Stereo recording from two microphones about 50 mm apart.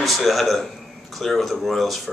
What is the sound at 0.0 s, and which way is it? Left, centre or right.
A man's voice, centre.